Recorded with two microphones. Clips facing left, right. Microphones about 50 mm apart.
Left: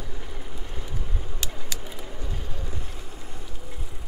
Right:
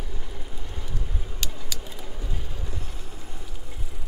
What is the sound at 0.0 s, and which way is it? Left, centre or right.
Vehicle, centre.